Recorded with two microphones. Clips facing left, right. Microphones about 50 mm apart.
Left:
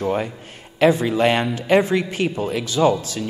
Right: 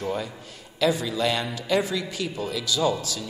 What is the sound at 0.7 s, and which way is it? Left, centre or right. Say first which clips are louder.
A man's voice: left 7 dB; left.